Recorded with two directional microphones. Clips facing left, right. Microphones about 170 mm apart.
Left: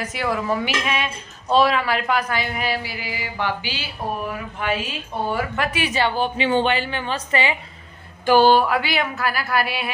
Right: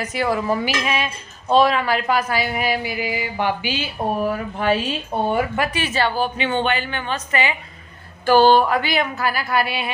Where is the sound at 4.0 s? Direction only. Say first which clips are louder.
Right 5 dB; 25° right (ahead or behind).